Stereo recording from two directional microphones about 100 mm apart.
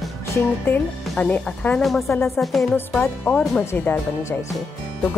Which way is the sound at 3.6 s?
25° left (ahead or behind).